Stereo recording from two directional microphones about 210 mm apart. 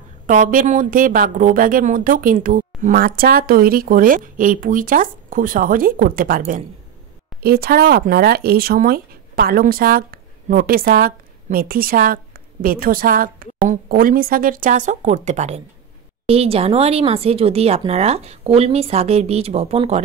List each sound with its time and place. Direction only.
0.3 s a woman's voice: 40° right (ahead or behind)